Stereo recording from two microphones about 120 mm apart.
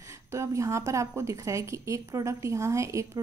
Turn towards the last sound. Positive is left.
turn(degrees=-25)  # may be behind; listen again after turning